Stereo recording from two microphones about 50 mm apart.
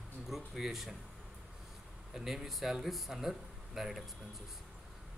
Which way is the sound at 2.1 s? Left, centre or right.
Centre.